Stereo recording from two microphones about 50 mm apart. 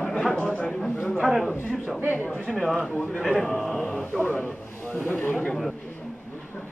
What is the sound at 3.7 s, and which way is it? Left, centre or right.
Speech, left.